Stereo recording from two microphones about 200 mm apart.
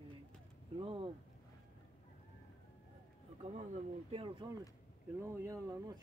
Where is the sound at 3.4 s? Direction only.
35° right (ahead or behind).